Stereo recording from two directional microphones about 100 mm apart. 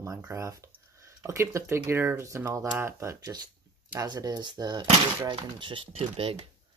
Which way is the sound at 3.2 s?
40° right (ahead or behind).